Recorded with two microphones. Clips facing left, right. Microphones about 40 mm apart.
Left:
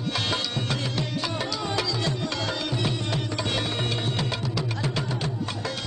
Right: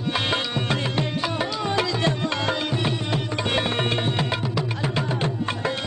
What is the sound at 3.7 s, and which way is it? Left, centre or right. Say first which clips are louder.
Music: right 4 dB; right.